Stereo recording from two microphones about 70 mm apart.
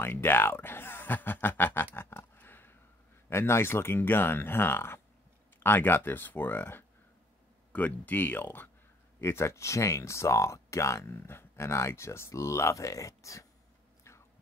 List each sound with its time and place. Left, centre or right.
0.0 s speech: left
2.0 s a sound: left
3.3 s speech: left